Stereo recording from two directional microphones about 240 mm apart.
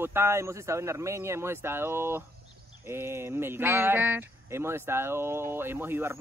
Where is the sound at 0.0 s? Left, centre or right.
Centre.